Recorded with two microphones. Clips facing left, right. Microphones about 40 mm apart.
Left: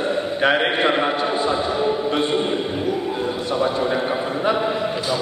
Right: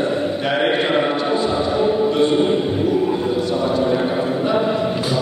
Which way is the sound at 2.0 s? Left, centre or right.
Centre.